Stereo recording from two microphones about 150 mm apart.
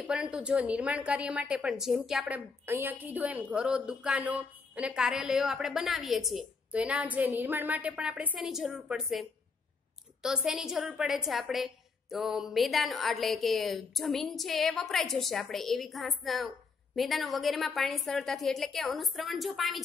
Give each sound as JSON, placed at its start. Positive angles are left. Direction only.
{"t": 0.0, "sound": "a woman's voice", "side_deg": -5}